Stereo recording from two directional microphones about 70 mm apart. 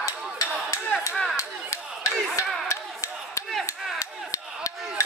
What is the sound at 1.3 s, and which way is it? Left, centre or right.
Clapping, left.